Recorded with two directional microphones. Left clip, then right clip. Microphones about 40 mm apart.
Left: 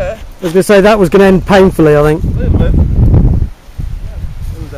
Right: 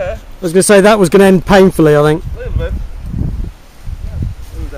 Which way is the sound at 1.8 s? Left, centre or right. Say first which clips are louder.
Left 1 dB; right.